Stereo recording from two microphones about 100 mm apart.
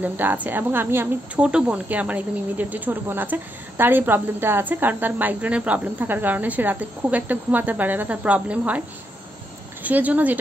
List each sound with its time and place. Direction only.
0.0 s a woman's voice: 20° right (ahead or behind)
9.8 s speech: 15° right (ahead or behind)